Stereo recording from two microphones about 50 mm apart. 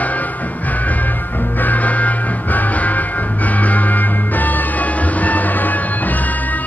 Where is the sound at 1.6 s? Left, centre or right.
Left.